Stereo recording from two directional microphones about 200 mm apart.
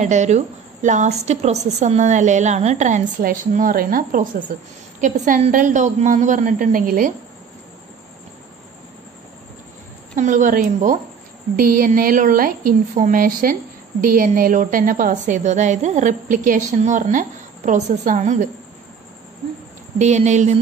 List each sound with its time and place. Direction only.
0.0 s a woman's voice: 35° right (ahead or behind)
10.1 s a woman's voice: 40° right (ahead or behind)
20.0 s a woman's voice: 35° right (ahead or behind)